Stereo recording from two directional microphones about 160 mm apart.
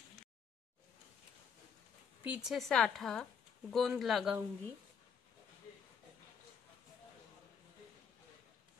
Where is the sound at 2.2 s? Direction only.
5° right (ahead or behind).